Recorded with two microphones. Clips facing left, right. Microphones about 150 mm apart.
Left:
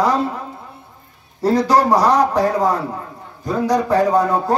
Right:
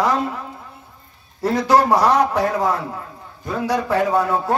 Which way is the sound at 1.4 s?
35° left (ahead or behind).